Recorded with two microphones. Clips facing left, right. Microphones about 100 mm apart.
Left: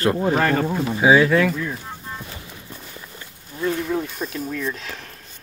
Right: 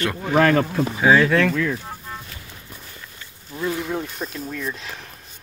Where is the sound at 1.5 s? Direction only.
90° right.